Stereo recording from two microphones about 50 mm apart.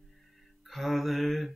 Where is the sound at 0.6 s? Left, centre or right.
Centre.